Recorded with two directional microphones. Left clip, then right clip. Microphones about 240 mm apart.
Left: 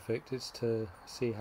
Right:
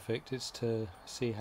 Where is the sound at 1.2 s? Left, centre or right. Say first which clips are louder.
Left 1 dB; centre.